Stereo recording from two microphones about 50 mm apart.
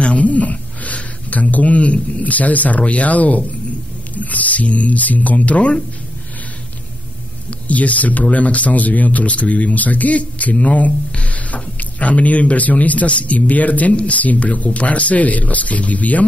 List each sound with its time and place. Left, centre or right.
0.0 s a sound: left
2.8 s speech: left
7.4 s speech: left